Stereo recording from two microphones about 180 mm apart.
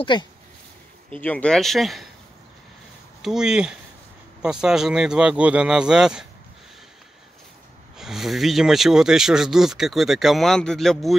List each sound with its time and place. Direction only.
0.0 s speech: 25° left (ahead or behind)
1.2 s speech: 5° left (ahead or behind)
3.2 s speech: 5° right (ahead or behind)
8.0 s speech: centre (ahead or behind)